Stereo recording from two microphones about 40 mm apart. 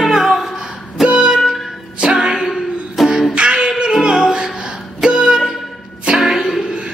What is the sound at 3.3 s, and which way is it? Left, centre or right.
Singing, right.